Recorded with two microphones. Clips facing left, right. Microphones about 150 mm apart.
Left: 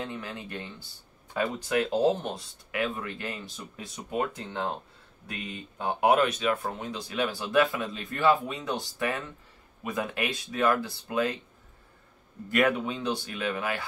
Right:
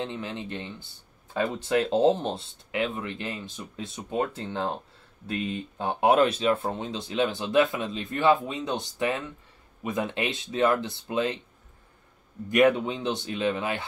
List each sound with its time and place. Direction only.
0.0 s speech: 25° right (ahead or behind)
12.4 s speech: 20° right (ahead or behind)